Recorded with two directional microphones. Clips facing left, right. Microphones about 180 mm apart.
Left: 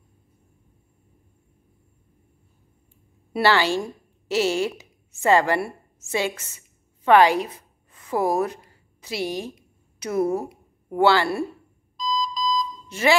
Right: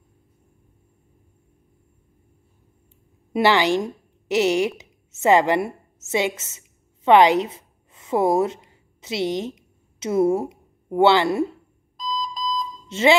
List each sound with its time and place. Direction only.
3.3 s a woman's voice: 15° right (ahead or behind)
12.0 s alarm clock: 55° right (ahead or behind)
12.8 s beep: 25° right (ahead or behind)